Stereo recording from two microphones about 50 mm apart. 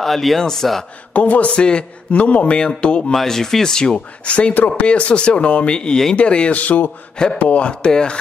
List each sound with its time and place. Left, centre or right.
0.0 s speech: centre
1.1 s speech: left
3.2 s speech: centre